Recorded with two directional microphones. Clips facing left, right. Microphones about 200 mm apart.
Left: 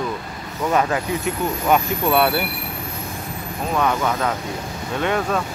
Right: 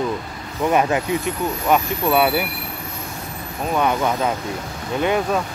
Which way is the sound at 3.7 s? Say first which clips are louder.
Right 1 dB; 15° right (ahead or behind).